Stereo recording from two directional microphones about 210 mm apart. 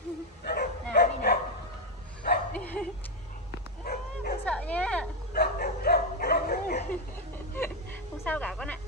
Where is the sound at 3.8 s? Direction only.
45° left (ahead or behind).